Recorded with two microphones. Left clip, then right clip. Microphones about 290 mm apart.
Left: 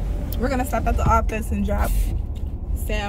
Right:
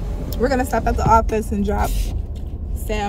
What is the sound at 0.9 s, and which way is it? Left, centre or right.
Speech, centre.